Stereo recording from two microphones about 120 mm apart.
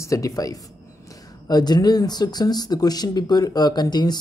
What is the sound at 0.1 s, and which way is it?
Speech, 30° left (ahead or behind).